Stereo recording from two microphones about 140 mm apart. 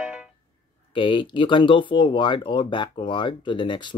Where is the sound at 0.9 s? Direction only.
35° left (ahead or behind).